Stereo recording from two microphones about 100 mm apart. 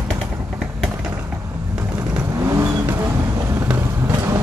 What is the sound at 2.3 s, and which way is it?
Vehicle, 30° right (ahead or behind).